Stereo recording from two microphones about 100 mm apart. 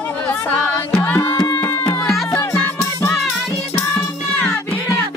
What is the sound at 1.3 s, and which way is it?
Music, 35° left (ahead or behind).